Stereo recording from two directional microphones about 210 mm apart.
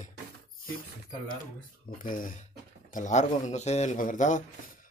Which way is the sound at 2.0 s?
40° left (ahead or behind).